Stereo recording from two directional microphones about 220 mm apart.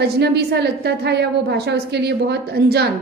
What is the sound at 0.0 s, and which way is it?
A woman's voice, 50° right (ahead or behind).